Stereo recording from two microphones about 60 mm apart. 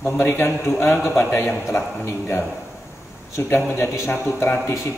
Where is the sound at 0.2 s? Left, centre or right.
Left.